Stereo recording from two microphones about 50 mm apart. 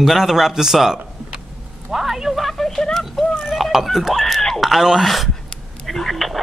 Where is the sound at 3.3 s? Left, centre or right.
Centre.